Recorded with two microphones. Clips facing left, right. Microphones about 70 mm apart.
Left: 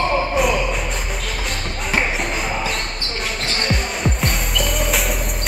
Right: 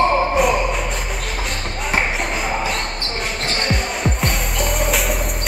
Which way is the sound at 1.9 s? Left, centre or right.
Centre.